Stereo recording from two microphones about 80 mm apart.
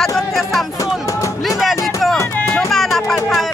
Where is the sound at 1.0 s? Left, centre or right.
Left.